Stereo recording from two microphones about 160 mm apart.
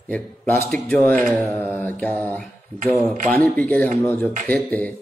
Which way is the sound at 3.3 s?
10° left (ahead or behind).